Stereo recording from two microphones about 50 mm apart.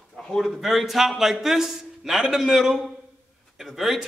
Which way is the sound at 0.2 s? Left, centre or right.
Centre.